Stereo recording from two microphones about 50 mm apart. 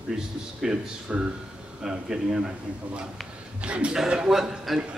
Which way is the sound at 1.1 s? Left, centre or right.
Right.